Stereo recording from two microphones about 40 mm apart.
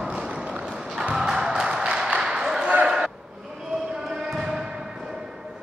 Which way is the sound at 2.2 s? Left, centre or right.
Centre.